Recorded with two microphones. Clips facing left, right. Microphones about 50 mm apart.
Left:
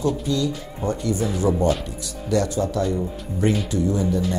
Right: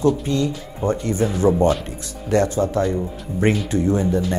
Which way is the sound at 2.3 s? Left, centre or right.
Right.